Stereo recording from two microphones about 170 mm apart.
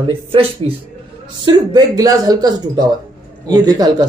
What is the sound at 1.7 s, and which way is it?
Speech, 25° right (ahead or behind).